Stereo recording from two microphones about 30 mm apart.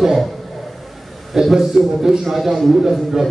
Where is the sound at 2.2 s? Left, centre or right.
Centre.